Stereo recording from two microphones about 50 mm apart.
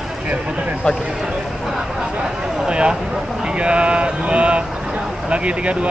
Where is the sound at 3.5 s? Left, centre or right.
Right.